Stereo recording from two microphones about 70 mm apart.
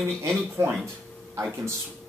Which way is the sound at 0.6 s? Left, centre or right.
Right.